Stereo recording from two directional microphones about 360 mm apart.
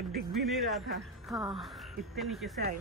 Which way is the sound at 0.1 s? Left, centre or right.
Right.